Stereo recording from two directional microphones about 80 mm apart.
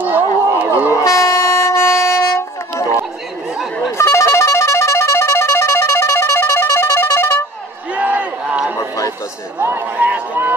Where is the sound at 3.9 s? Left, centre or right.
Left.